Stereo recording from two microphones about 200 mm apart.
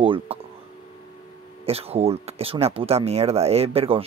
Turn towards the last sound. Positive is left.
turn(degrees=-30)  # may be behind; listen again after turning